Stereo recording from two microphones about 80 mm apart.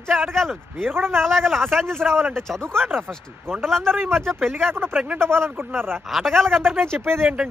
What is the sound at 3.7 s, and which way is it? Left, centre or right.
Speech, centre.